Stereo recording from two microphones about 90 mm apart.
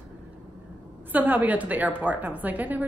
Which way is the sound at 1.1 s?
20° right (ahead or behind).